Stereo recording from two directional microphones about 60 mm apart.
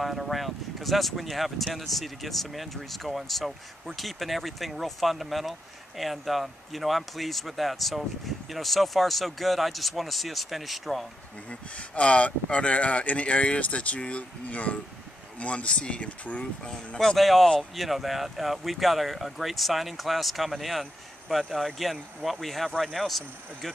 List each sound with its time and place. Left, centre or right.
0.0 s speech: centre
11.9 s speech: centre
16.6 s speech: centre